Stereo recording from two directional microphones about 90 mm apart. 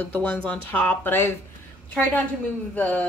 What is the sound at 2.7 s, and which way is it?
Speech, 15° left (ahead or behind).